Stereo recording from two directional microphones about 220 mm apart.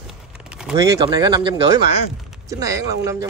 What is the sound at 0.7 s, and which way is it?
Speech, 15° right (ahead or behind).